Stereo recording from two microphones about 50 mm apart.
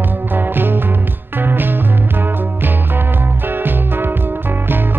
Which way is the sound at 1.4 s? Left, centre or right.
Right.